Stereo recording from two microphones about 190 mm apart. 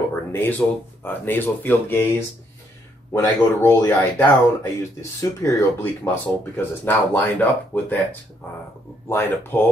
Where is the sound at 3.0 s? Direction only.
15° left (ahead or behind).